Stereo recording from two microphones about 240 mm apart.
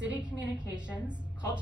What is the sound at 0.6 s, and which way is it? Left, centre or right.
A woman's voice, centre.